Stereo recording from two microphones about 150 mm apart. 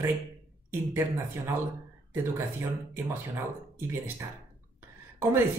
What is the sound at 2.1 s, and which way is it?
Speech, 15° right (ahead or behind).